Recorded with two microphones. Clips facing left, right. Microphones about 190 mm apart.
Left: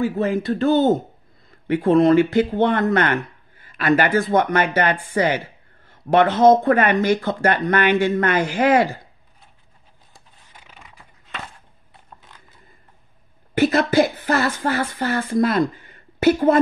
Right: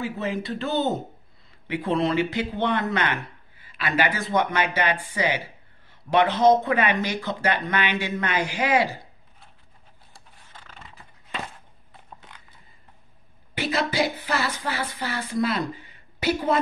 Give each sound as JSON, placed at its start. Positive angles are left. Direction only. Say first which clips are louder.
{"t": 0.0, "sound": "speech", "louder": "left 8 dB", "side_deg": 50}
{"t": 10.1, "sound": "a sound", "louder": "right 1 dB", "side_deg": 10}
{"t": 13.6, "sound": "a woman's voice", "louder": "left 8 dB", "side_deg": 50}